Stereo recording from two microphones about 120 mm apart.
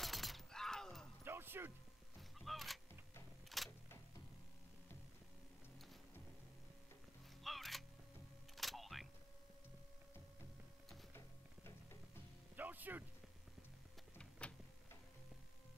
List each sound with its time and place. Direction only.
0.0 s shatter: centre (ahead or behind)
1.2 s music: 20° right (ahead or behind)
2.3 s vehicle: centre (ahead or behind)
3.4 s a sound: centre (ahead or behind)
7.4 s music: centre (ahead or behind)
8.5 s camera: centre (ahead or behind)
11.1 s music: 20° left (ahead or behind)
12.5 s a sound: 15° right (ahead or behind)